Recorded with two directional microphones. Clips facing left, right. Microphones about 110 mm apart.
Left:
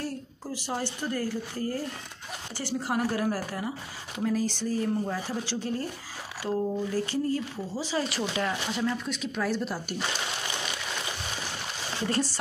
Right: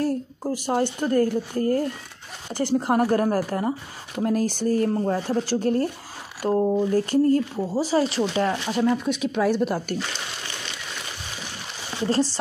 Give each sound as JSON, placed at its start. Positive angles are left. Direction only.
{"t": 0.0, "sound": "a woman's voice", "side_deg": -50}
{"t": 8.8, "sound": "speech", "side_deg": -65}
{"t": 12.1, "sound": "speech", "side_deg": -30}